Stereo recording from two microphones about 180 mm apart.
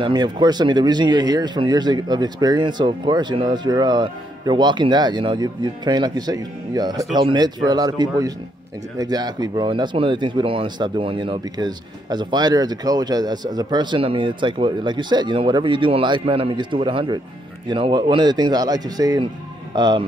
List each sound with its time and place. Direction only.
0.0 s speech: 25° right (ahead or behind)